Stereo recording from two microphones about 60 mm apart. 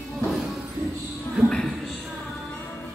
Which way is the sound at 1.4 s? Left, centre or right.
Centre.